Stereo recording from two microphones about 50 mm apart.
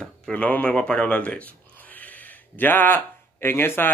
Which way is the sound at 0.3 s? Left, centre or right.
Left.